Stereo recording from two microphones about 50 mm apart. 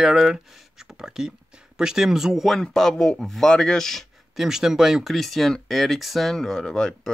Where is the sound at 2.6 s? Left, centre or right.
Centre.